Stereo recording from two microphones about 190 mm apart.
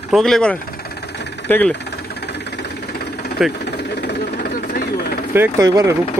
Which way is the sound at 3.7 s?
60° left (ahead or behind).